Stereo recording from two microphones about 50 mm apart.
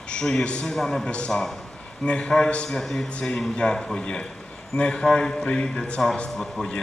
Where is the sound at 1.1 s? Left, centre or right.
Centre.